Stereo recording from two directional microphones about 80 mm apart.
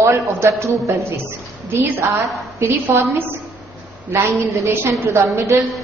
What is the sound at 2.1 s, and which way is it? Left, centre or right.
Speech, right.